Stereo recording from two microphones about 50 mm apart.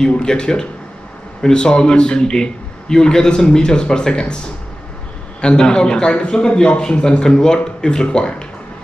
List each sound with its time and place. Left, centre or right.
0.2 s a man's voice: centre
5.4 s a man's voice: centre